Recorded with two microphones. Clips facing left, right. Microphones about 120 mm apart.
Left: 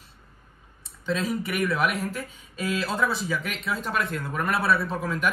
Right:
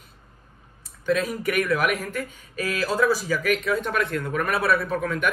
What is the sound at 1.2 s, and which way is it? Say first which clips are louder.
A man's voice: right 2 dB; centre (ahead or behind).